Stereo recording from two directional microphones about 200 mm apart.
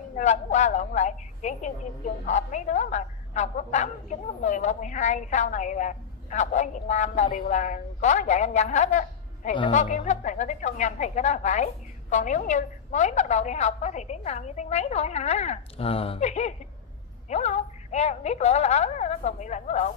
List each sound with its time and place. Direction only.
0.1 s a woman's voice: 35° left (ahead or behind)